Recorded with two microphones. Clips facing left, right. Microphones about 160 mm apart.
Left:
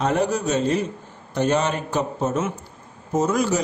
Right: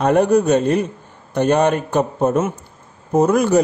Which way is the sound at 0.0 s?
55° right (ahead or behind).